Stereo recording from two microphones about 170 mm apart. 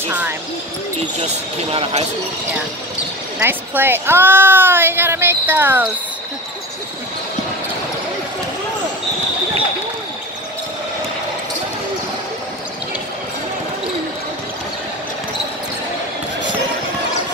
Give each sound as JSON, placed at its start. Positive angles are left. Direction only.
{"t": 1.2, "sound": "speech", "side_deg": -35}
{"t": 3.3, "sound": "a woman's voice", "side_deg": -10}